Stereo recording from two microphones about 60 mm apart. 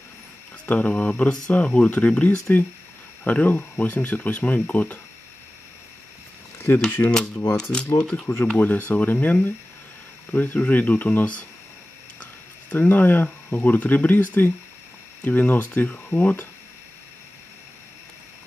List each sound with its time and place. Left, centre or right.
0.7 s speech: left
6.7 s speech: left
7.1 s speech: centre
7.9 s speech: left
8.5 s speech: left